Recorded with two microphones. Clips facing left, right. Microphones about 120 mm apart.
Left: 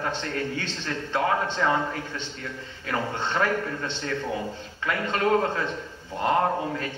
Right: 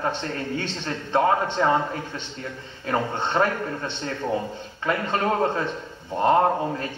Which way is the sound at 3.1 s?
25° right (ahead or behind).